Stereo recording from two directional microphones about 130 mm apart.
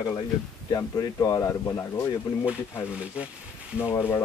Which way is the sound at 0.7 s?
25° left (ahead or behind).